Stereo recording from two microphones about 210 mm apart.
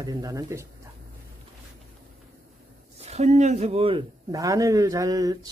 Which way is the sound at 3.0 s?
30° right (ahead or behind).